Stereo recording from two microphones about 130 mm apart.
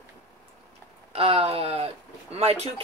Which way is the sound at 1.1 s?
50° right (ahead or behind).